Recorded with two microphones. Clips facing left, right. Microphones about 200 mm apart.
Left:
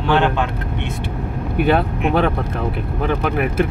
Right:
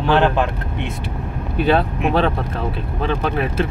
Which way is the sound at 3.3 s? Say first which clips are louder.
Left 2 dB; 15° left (ahead or behind).